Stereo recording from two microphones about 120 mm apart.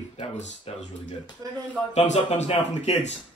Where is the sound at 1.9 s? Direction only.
70° left (ahead or behind).